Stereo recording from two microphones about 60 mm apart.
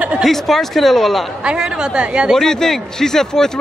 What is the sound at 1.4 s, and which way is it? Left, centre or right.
Speech, centre.